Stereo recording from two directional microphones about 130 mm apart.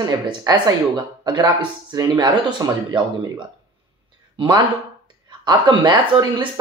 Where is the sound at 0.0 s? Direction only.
30° right (ahead or behind).